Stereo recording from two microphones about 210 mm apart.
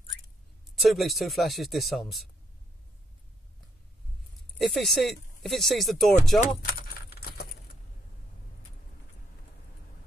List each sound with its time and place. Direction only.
0.7 s speech: centre (ahead or behind)
4.6 s speech: centre (ahead or behind)
7.2 s keys jangling: 45° left (ahead or behind)